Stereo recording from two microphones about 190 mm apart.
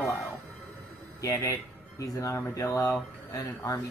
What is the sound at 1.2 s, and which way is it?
Speech, 15° left (ahead or behind).